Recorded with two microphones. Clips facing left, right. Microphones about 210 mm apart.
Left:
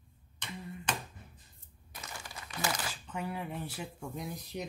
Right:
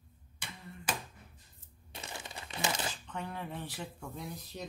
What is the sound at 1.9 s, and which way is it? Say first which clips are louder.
Crumpling: right 2 dB; 25° right (ahead or behind).